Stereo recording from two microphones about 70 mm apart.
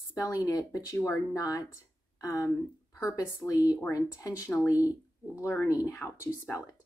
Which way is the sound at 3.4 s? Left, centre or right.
Left.